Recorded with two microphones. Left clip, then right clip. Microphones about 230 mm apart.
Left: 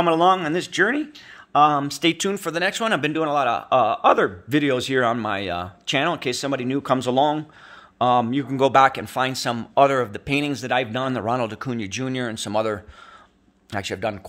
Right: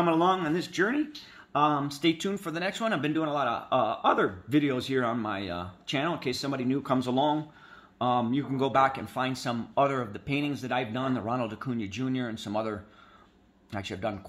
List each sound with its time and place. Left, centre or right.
0.0 s speech: left